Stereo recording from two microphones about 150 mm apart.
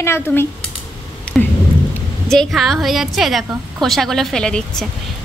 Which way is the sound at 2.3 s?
Centre (ahead or behind).